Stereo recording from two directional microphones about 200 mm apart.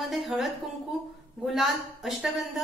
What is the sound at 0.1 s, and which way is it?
A woman's voice, centre (ahead or behind).